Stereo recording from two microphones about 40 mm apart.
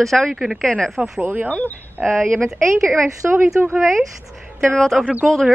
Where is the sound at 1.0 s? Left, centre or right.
Right.